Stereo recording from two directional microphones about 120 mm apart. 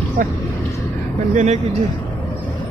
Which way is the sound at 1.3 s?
65° right (ahead or behind).